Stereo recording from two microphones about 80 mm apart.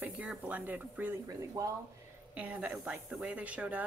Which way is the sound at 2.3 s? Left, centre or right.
Centre.